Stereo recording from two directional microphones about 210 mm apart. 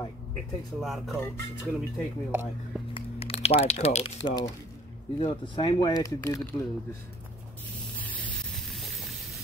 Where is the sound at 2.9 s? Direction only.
30° left (ahead or behind).